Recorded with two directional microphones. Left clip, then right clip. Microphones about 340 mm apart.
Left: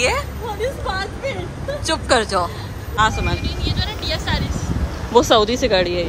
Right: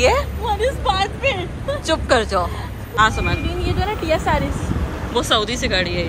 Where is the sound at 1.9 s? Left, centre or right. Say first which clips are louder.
Even; centre.